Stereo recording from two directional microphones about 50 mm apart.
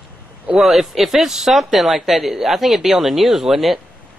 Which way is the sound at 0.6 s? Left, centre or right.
Centre.